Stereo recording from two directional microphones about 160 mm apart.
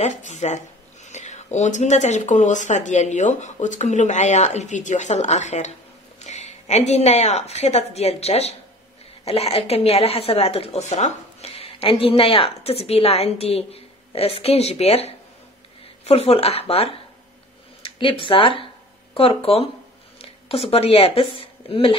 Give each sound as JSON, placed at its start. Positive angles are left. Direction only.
{"t": 0.0, "sound": "a woman's voice", "side_deg": 45}